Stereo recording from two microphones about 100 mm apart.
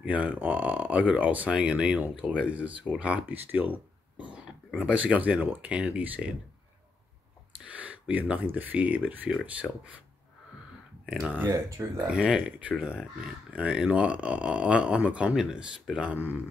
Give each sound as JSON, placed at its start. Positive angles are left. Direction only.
{"t": 0.0, "sound": "speech", "side_deg": -15}
{"t": 7.8, "sound": "a sound", "side_deg": -15}
{"t": 8.5, "sound": "speech", "side_deg": -15}
{"t": 9.6, "sound": "speech", "side_deg": 5}
{"t": 11.2, "sound": "speech", "side_deg": -15}
{"t": 12.1, "sound": "speech", "side_deg": -5}